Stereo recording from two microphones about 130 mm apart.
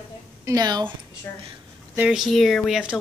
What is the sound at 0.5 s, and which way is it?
Speech, 30° right (ahead or behind).